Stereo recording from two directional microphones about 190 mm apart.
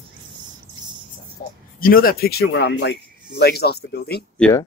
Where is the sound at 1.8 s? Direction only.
50° left (ahead or behind).